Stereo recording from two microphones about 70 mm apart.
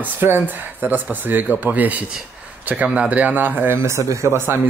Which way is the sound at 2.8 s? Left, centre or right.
Centre.